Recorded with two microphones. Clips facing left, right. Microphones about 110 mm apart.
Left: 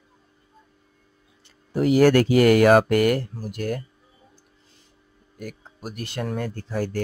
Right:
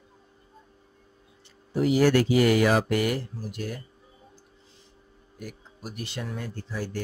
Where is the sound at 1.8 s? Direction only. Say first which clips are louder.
Left 4 dB; 55° left (ahead or behind).